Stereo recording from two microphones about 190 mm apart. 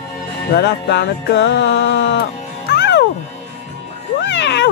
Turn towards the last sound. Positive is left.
turn(degrees=65)  # may be behind; listen again after turning